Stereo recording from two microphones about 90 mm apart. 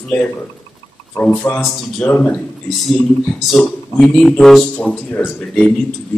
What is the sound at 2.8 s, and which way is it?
Speech, centre (ahead or behind).